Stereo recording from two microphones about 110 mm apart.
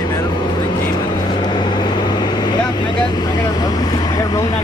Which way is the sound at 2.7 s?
45° left (ahead or behind).